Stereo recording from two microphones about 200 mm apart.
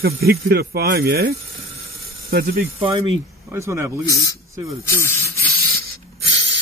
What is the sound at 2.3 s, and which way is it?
Speech, 45° right (ahead or behind).